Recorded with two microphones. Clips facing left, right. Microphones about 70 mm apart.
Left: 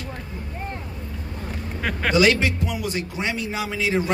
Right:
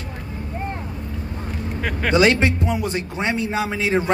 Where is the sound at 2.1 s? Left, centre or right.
Right.